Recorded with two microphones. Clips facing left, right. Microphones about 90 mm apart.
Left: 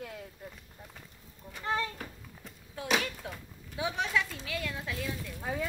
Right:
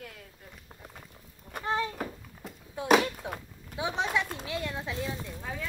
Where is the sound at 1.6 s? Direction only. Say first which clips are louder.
Right 2 dB; 20° right (ahead or behind).